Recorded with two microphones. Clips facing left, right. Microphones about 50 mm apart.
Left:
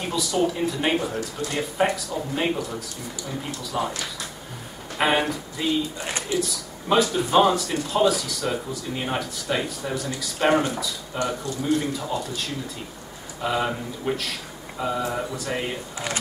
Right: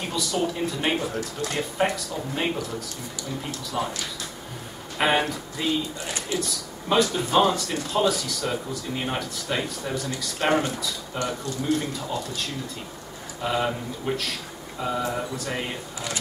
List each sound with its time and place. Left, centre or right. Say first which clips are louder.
0.0 s speech: left 3 dB; centre
4.9 s speech: left 1 dB; centre